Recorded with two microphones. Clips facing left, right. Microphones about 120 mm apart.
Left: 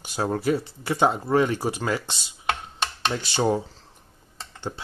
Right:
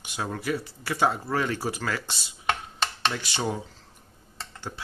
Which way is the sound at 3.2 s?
30° left (ahead or behind).